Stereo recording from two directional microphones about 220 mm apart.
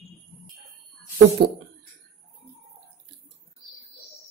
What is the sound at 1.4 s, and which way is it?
Speech, 45° right (ahead or behind).